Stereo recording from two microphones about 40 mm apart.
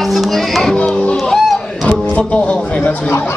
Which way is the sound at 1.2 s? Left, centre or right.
Centre.